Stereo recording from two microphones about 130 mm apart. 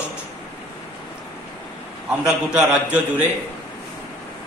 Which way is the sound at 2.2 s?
10° right (ahead or behind).